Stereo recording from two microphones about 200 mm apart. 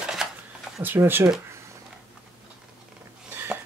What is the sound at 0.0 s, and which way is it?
Shuffling cards, 5° right (ahead or behind).